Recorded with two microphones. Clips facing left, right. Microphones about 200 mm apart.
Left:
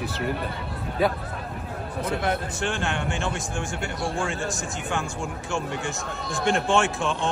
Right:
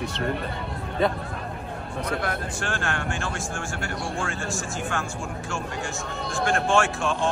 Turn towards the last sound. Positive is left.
turn(degrees=20)  # may be behind; listen again after turning